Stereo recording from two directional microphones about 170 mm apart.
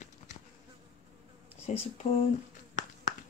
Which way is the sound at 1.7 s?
45° left (ahead or behind).